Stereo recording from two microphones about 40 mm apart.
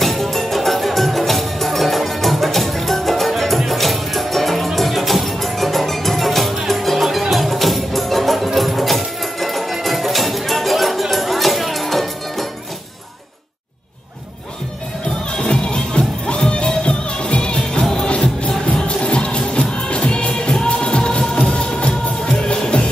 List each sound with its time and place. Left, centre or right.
0.0 s music: centre
15.5 s music: centre